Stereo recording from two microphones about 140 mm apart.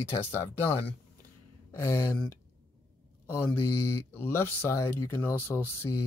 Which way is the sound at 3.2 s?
15° left (ahead or behind).